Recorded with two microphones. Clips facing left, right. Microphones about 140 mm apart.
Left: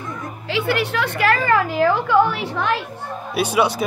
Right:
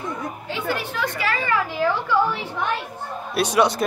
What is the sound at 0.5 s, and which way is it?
A woman's voice, 80° left.